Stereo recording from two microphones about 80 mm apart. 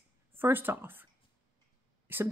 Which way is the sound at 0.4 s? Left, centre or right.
Right.